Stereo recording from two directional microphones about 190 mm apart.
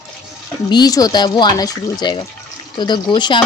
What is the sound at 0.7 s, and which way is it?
Speech, 20° left (ahead or behind).